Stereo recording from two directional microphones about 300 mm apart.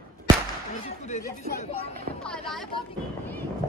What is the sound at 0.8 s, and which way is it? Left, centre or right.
Speech, left.